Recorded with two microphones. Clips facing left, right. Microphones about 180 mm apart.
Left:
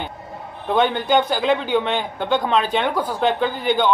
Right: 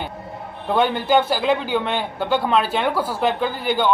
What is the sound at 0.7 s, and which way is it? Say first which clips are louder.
A man's voice: even; 5° right (ahead or behind).